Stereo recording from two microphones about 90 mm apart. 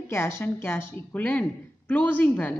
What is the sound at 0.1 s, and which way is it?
A woman's voice, 30° left (ahead or behind).